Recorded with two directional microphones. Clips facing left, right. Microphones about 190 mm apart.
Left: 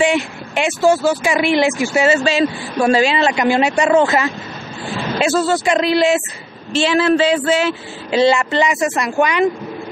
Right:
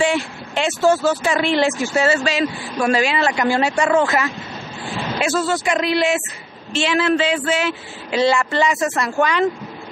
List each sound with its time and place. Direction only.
0.0 s speech: 15° left (ahead or behind)
2.1 s speech: 25° left (ahead or behind)